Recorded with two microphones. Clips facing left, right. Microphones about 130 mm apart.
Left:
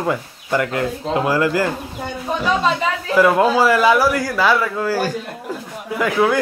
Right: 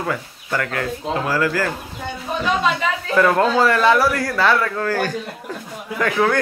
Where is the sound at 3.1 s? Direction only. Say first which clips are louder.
Left 2 dB; 10° left (ahead or behind).